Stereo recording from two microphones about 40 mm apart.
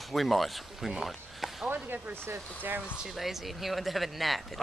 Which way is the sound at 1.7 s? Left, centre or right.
Right.